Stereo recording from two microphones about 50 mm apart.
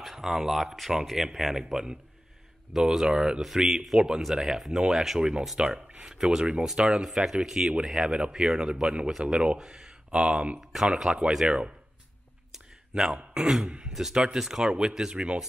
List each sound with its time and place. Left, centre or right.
0.0 s speech: centre
5.6 s speech: centre
9.6 s speech: centre
10.1 s speech: right
10.6 s speech: centre
12.5 s a sound: centre
13.3 s speech: centre
13.9 s speech: centre